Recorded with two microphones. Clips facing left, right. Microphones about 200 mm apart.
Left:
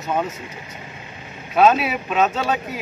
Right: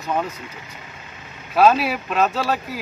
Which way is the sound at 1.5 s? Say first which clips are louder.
Even; centre (ahead or behind).